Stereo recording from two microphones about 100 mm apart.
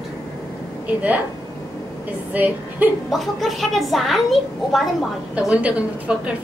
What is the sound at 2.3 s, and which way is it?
Speech, 15° right (ahead or behind).